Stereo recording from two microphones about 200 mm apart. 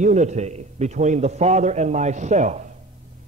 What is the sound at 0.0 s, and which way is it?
A man's voice, 35° right (ahead or behind).